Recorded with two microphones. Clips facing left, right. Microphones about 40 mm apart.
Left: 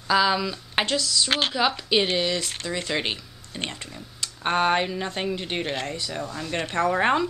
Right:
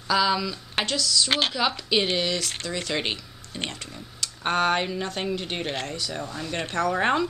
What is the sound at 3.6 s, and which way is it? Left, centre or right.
Speech, centre.